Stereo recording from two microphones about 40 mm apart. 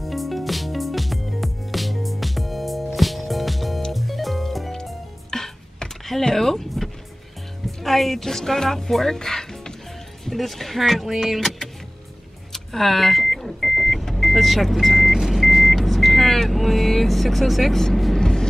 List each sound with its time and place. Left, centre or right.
0.0 s music: centre
7.6 s speech: centre
12.5 s vehicle: centre
18.2 s vehicle: centre